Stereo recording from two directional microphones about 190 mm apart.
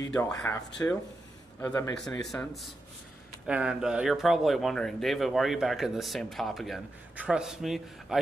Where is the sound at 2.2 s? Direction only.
Centre (ahead or behind).